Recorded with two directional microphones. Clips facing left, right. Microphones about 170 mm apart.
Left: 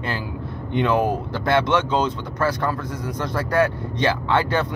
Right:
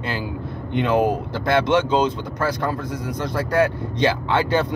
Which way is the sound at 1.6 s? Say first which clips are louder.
Right 2 dB; 15° right (ahead or behind).